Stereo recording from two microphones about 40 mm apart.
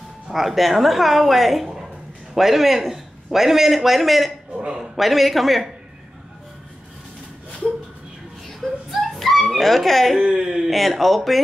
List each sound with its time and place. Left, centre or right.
0.3 s a man's voice: centre
8.5 s dog: centre
10.2 s speech: centre
10.7 s a man's voice: centre